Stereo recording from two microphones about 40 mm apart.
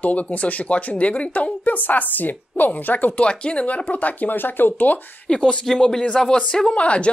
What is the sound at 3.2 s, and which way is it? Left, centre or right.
Speech, left.